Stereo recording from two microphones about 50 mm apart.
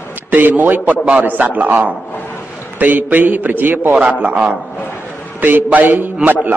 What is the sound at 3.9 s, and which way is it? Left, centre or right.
Speech, centre.